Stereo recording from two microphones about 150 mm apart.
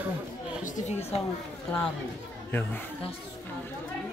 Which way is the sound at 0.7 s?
55° left (ahead or behind).